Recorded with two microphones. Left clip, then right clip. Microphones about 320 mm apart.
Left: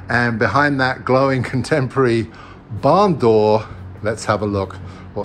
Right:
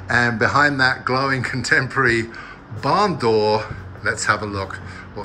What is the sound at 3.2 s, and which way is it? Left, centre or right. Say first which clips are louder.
Speech: left 4 dB; centre.